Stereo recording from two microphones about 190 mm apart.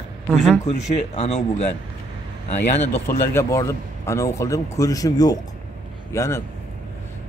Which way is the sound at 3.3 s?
15° left (ahead or behind).